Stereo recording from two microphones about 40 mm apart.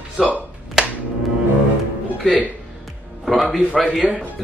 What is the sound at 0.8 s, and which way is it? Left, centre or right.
Music, centre.